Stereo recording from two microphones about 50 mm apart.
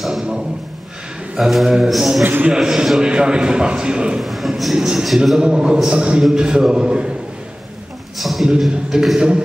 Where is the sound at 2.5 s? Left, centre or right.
Centre.